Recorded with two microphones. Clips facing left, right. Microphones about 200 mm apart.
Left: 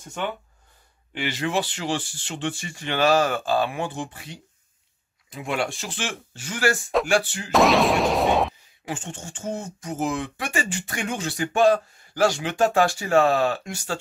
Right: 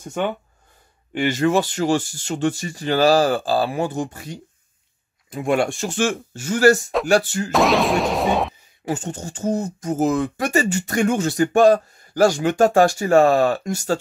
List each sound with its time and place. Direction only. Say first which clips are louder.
1.1 s speech: right 7 dB; 45° right (ahead or behind)
7.5 s a sound: even; centre (ahead or behind)
8.8 s speech: right 7 dB; 40° right (ahead or behind)